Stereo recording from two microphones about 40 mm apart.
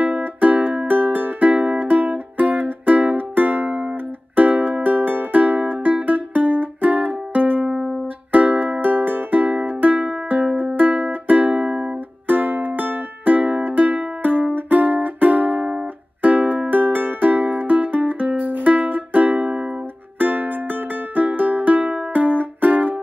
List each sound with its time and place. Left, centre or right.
0.2 s music: right